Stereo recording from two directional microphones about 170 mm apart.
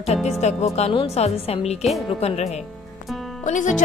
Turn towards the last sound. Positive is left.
turn(degrees=45)  # may be behind; listen again after turning